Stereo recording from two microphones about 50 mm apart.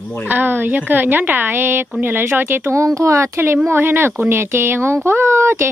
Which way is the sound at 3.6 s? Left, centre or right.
Right.